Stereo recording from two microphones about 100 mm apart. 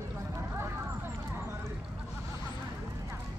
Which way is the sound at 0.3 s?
25° right (ahead or behind).